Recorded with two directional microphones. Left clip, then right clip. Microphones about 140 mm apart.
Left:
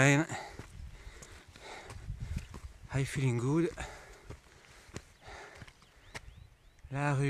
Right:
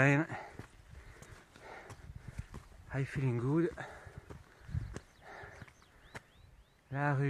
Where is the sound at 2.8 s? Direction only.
40° left (ahead or behind).